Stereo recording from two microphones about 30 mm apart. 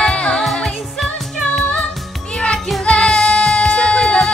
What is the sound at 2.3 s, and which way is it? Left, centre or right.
Music, left.